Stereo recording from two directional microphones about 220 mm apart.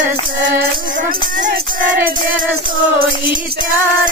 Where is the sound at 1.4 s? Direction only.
35° right (ahead or behind).